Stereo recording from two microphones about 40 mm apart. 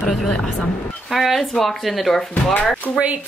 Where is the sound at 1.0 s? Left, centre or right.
Centre.